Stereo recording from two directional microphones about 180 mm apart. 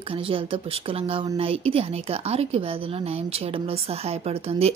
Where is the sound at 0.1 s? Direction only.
30° right (ahead or behind).